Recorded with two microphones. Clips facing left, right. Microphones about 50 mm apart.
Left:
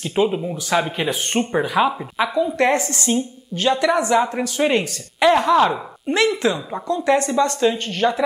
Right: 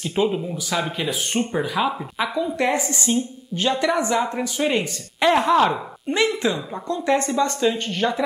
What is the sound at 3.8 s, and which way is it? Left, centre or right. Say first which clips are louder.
Speech: left 4 dB; left.